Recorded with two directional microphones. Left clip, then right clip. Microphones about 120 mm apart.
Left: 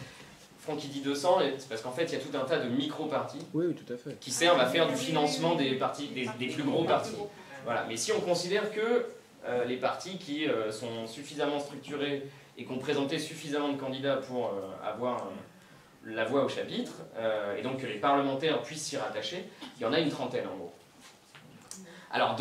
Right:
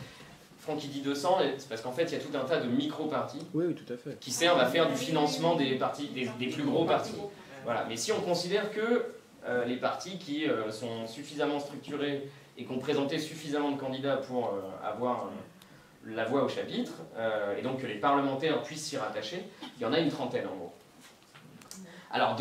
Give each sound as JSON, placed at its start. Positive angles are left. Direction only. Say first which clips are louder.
{"t": 0.7, "sound": "speech", "louder": "left 1 dB", "side_deg": 0}
{"t": 16.2, "sound": "speech", "louder": "left 1 dB", "side_deg": 0}
{"t": 22.1, "sound": "speech", "louder": "even", "side_deg": 0}